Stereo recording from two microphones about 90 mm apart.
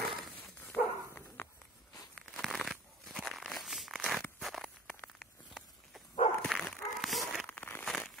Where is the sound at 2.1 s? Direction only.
Centre (ahead or behind).